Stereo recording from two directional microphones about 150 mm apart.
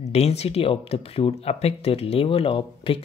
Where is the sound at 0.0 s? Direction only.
45° left (ahead or behind).